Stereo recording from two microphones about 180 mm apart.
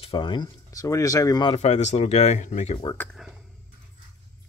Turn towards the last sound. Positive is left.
turn(degrees=0)  # may be behind; listen again after turning